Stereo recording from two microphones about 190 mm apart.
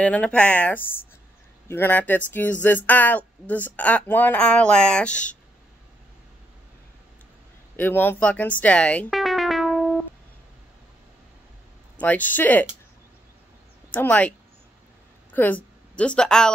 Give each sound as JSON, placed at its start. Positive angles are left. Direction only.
{"t": 0.0, "sound": "speech", "side_deg": 5}
{"t": 7.7, "sound": "speech", "side_deg": 10}
{"t": 12.0, "sound": "speech", "side_deg": 10}
{"t": 13.9, "sound": "speech", "side_deg": 5}
{"t": 15.3, "sound": "a woman's voice", "side_deg": 10}